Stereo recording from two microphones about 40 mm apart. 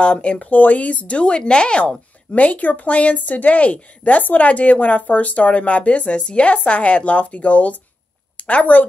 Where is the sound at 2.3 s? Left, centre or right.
Left.